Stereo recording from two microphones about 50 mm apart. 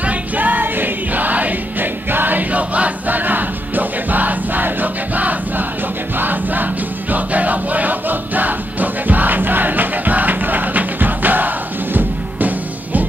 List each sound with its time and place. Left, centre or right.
0.0 s music: right